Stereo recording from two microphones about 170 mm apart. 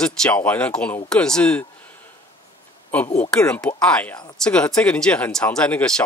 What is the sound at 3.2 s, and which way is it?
Speech, 5° left (ahead or behind).